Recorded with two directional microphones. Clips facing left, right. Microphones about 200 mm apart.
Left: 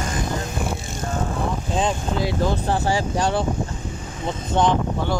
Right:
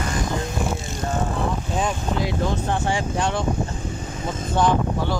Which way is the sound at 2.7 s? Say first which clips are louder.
Left 2 dB; 35° left (ahead or behind).